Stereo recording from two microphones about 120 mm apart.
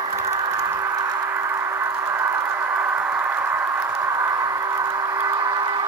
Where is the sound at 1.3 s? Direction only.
20° right (ahead or behind).